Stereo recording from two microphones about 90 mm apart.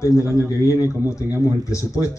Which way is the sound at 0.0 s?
35° left (ahead or behind).